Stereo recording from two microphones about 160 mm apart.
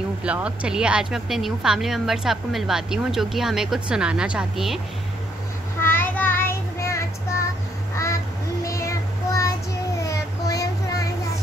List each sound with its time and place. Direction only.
0.2 s speech: 10° right (ahead or behind)
5.8 s child singing: 15° left (ahead or behind)
8.6 s child singing: 20° left (ahead or behind)